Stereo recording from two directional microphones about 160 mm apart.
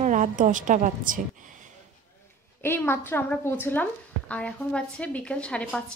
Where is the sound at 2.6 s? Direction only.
15° left (ahead or behind).